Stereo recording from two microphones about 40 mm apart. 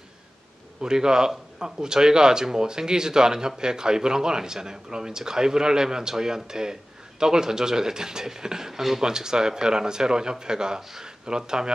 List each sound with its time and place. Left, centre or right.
0.7 s a man's voice: centre